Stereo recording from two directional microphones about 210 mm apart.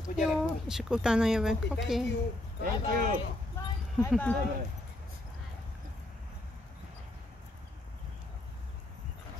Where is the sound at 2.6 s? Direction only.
40° right (ahead or behind).